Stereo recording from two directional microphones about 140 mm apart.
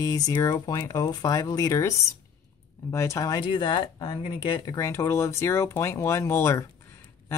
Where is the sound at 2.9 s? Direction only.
20° left (ahead or behind); by 4.6 s 40° left (ahead or behind).